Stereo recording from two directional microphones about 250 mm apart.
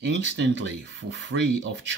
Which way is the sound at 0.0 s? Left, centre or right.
Right.